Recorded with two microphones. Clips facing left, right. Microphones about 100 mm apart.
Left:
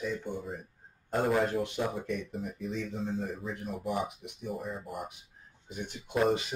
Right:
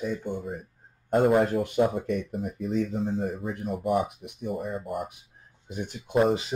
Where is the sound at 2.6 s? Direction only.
55° right (ahead or behind).